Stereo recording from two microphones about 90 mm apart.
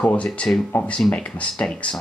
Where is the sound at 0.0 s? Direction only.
15° left (ahead or behind).